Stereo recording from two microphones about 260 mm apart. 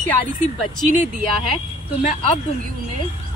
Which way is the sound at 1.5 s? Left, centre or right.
Left.